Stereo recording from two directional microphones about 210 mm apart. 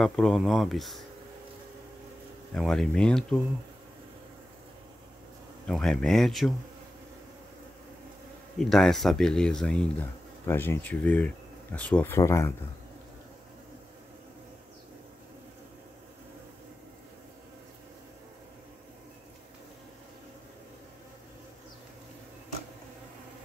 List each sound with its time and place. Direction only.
0.0 s speech: centre (ahead or behind)
2.5 s speech: centre (ahead or behind)
5.7 s speech: centre (ahead or behind)
8.5 s speech: centre (ahead or behind)